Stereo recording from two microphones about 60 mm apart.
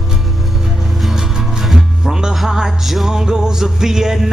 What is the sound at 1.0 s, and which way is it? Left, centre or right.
Music, centre.